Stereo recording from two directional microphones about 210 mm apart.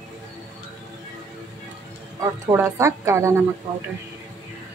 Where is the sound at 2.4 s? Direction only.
15° right (ahead or behind).